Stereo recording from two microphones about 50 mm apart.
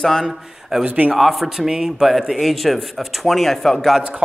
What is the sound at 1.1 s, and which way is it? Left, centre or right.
A man's voice, centre.